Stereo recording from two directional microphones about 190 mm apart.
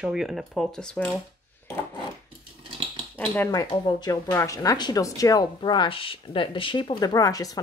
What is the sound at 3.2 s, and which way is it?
Speech, 10° left (ahead or behind).